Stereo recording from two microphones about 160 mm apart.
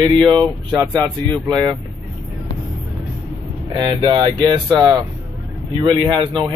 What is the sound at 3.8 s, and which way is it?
Speech, 30° right (ahead or behind).